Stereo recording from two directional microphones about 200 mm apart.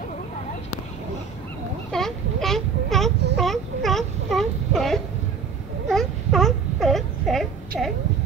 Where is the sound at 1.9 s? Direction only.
Centre (ahead or behind).